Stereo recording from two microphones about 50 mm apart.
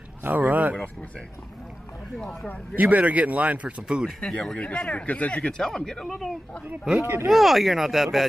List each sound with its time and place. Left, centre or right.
0.2 s speech: right
2.7 s speech: right
4.0 s speech: centre
4.6 s speech: left
5.6 s speech: centre
7.0 s speech: right
7.2 s speech: centre